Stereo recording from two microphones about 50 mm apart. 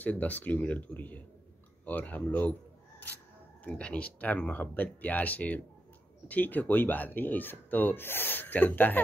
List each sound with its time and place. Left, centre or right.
0.0 s speech: left
3.6 s speech: left